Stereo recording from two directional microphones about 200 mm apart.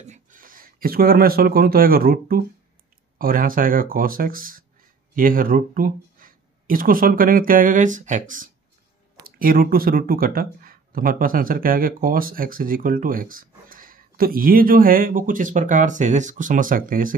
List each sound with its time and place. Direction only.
0.0 s speech: 40° right (ahead or behind)